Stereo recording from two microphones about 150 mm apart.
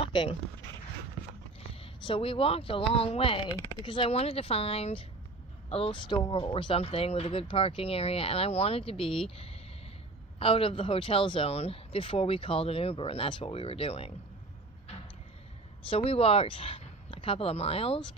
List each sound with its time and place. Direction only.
0.0 s speech: 35° left (ahead or behind)
1.8 s speech: 35° left (ahead or behind)
15.9 s speech: 40° left (ahead or behind)